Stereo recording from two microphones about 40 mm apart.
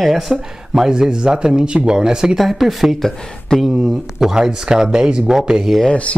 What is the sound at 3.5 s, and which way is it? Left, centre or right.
Speech, centre.